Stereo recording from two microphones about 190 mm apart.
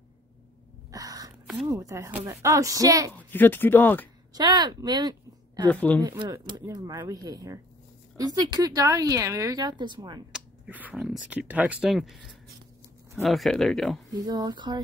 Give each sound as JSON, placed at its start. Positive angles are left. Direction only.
{"t": 0.9, "sound": "gasp", "side_deg": -20}
{"t": 1.7, "sound": "a woman's voice", "side_deg": -15}
{"t": 3.2, "sound": "speech", "side_deg": 10}
{"t": 4.3, "sound": "speech", "side_deg": -20}
{"t": 5.7, "sound": "speech", "side_deg": 10}
{"t": 6.0, "sound": "speech", "side_deg": -20}
{"t": 10.3, "sound": "a sound", "side_deg": -10}
{"t": 11.2, "sound": "speech", "side_deg": -10}
{"t": 14.2, "sound": "speech", "side_deg": -20}